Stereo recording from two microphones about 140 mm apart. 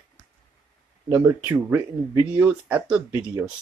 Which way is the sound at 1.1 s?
20° right (ahead or behind).